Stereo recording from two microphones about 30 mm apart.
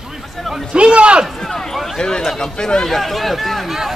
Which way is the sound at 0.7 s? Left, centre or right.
Right.